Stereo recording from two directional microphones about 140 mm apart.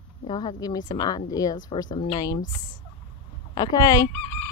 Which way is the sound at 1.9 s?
45° left (ahead or behind).